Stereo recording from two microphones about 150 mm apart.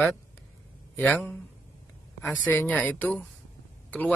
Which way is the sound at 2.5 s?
10° left (ahead or behind).